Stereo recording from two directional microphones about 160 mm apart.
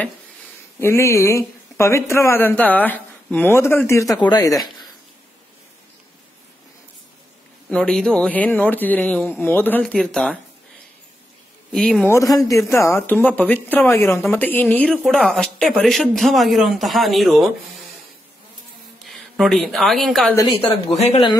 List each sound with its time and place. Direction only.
0.7 s speech: 15° left (ahead or behind)
7.7 s speech: 5° left (ahead or behind)
11.7 s speech: 5° left (ahead or behind)
12.1 s speech: 20° left (ahead or behind); by 17.5 s centre (ahead or behind)
19.0 s speech: centre (ahead or behind)
20.9 s speech: 40° left (ahead or behind)